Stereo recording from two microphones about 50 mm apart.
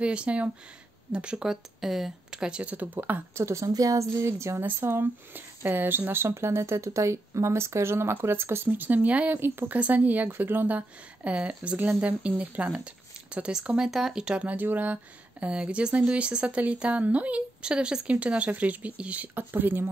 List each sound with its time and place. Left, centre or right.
0.0 s speech: right
2.6 s speech: right
3.3 s speech: right
4.6 s speech: right
5.0 s speech: right
8.6 s speech: right
9.3 s speech: right
9.8 s speech: right
11.2 s speech: right
13.7 s speech: centre
14.4 s speech: right
15.4 s speech: right
19.3 s speech: right